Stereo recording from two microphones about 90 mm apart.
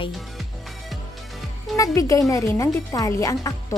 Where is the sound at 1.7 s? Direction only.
35° left (ahead or behind).